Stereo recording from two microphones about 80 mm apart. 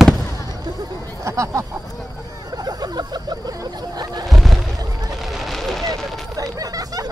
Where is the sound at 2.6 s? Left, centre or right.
Right.